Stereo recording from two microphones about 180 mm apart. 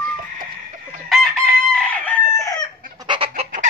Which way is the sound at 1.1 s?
Centre (ahead or behind).